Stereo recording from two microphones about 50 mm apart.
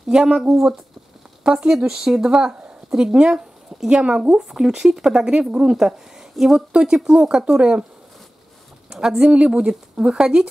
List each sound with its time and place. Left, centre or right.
0.1 s speech: centre
9.1 s speech: right
9.7 s speech: centre